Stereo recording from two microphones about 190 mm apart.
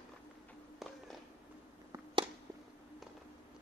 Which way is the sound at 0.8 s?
Centre (ahead or behind).